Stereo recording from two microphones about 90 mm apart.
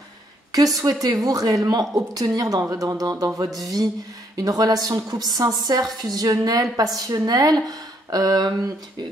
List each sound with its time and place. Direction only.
0.7 s a woman's voice: 40° right (ahead or behind)